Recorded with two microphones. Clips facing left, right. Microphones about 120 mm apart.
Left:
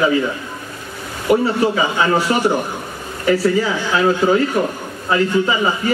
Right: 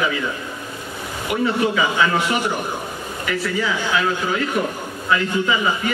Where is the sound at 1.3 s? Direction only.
35° left (ahead or behind).